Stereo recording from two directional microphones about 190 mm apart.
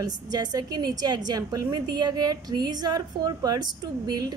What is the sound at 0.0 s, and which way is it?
A woman's voice, 20° right (ahead or behind).